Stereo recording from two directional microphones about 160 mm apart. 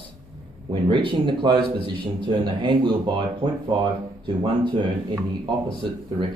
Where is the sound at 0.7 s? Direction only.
30° right (ahead or behind).